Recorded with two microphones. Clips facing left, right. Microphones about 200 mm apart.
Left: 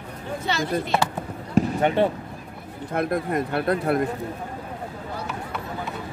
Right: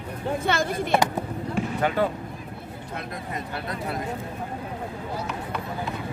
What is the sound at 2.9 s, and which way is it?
Speech, 55° left (ahead or behind).